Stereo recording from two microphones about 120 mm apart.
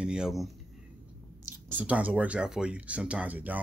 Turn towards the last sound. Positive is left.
turn(degrees=-15)  # may be behind; listen again after turning